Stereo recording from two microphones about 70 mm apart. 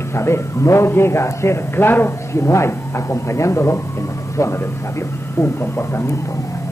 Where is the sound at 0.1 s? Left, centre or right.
Left.